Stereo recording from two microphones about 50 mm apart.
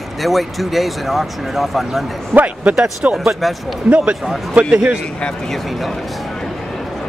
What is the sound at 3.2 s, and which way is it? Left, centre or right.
Speech, centre.